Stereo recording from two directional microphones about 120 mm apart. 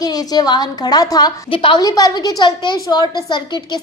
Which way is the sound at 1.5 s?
50° left (ahead or behind).